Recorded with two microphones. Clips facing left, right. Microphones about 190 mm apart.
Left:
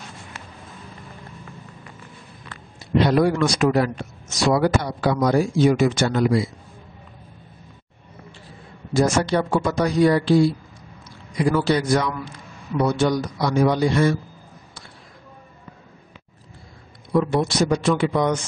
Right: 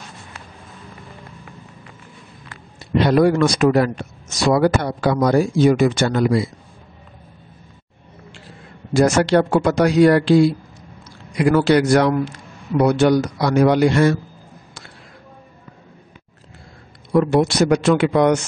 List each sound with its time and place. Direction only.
3.0 s speech: 60° right (ahead or behind)
8.9 s a man's voice: 75° right (ahead or behind)
17.1 s a man's voice: 75° right (ahead or behind)